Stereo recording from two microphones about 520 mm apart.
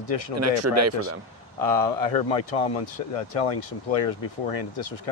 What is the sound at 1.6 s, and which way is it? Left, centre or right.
Speech, left.